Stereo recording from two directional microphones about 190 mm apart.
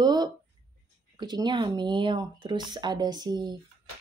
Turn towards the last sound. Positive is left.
turn(degrees=-20)  # may be behind; listen again after turning